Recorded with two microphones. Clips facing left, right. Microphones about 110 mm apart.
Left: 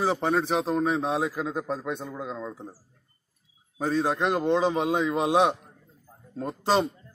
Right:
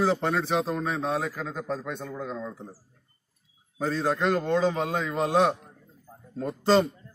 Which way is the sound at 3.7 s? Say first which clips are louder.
Left 1 dB; 15° left (ahead or behind).